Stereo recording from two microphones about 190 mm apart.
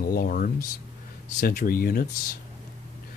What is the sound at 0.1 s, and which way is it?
Speech, 50° left (ahead or behind).